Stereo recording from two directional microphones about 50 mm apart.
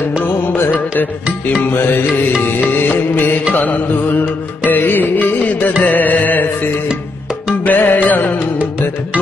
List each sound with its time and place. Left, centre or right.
1.6 s music: left
7.6 s music: left